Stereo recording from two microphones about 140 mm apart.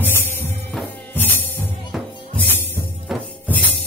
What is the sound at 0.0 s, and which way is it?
Music, 15° left (ahead or behind).